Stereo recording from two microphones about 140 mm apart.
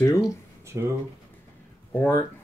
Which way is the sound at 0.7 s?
15° right (ahead or behind).